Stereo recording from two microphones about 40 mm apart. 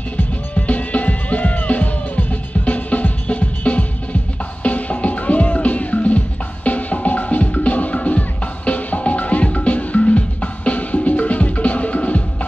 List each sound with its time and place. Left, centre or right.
0.6 s music: left